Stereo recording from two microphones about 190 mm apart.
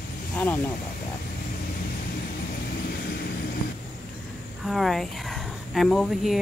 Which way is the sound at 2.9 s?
55° left (ahead or behind).